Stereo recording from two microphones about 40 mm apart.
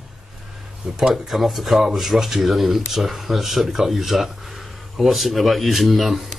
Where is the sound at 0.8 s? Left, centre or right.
Centre.